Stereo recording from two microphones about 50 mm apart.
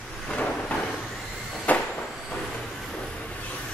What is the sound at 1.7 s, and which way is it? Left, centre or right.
Train, left.